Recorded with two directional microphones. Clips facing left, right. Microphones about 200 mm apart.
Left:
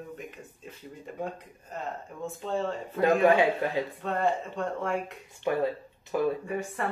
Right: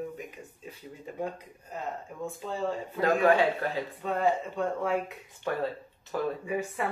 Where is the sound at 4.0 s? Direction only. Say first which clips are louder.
Right 3 dB; centre (ahead or behind).